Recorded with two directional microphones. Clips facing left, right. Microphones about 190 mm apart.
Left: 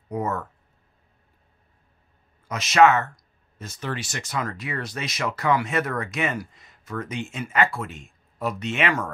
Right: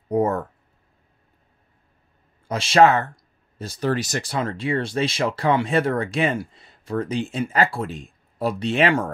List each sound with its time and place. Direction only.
0.1 s speech: 35° right (ahead or behind)
2.4 s speech: 30° right (ahead or behind)